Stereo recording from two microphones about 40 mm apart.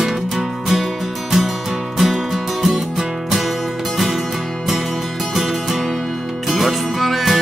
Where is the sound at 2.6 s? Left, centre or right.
Centre.